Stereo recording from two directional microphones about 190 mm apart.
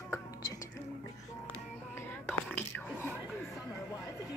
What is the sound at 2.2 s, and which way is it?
Whispering, 10° left (ahead or behind).